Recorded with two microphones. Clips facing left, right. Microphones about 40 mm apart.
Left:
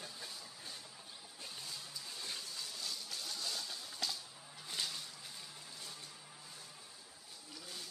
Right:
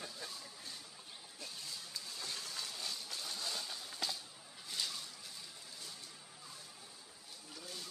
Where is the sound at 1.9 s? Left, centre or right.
Right.